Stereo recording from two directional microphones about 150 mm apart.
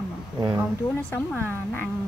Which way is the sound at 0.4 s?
20° right (ahead or behind).